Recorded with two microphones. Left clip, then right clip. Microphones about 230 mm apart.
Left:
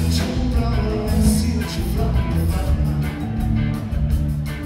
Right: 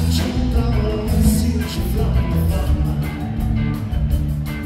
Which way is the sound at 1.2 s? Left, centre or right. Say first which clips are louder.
Right 1 dB; left.